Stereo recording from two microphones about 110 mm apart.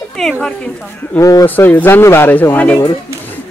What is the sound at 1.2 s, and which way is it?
Speech, 30° left (ahead or behind).